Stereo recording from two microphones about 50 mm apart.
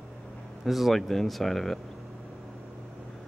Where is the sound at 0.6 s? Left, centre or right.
Centre.